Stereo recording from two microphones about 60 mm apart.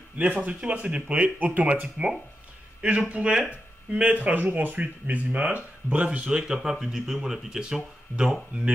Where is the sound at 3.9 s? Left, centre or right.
Right.